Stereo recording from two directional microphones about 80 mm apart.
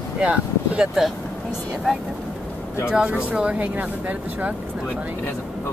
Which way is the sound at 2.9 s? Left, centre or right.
Centre.